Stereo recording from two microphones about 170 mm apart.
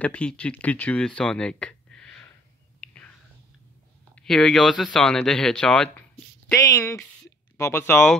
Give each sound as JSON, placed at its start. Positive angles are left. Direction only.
{"t": 0.0, "sound": "speech", "side_deg": 5}
{"t": 2.8, "sound": "whispering", "side_deg": 5}
{"t": 4.1, "sound": "speech", "side_deg": 0}
{"t": 6.5, "sound": "speech", "side_deg": 20}